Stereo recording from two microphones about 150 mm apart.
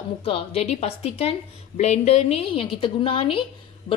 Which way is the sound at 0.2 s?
40° left (ahead or behind).